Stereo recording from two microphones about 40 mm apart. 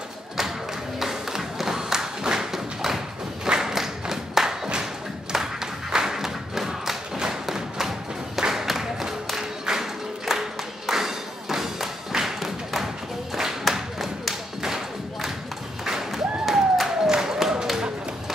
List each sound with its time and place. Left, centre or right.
0.9 s a sound: centre
3.4 s clapping: centre
8.4 s music: centre
10.9 s thump: centre
13.3 s clapping: centre
15.8 s a sound: centre